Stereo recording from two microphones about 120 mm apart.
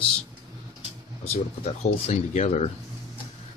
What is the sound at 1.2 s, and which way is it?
Speech, 60° left (ahead or behind).